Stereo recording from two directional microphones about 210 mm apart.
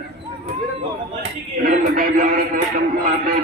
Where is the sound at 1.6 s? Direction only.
40° right (ahead or behind).